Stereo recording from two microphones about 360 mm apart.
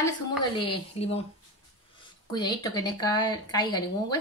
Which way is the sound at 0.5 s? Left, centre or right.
Centre.